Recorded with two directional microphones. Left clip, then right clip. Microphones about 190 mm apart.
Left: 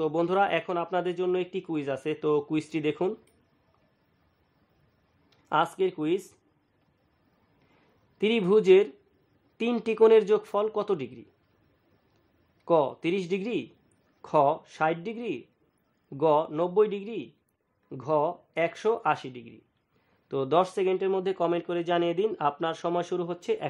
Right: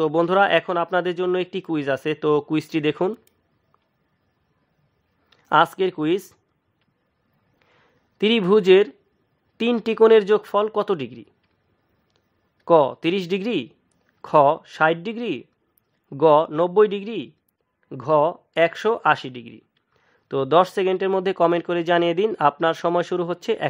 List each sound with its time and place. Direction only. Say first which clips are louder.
0.0 s speech: right 7 dB; 25° right (ahead or behind)
5.3 s speech: right 9 dB; 25° right (ahead or behind)
8.2 s speech: right 6 dB; 25° right (ahead or behind)
12.6 s speech: right 8 dB; 25° right (ahead or behind)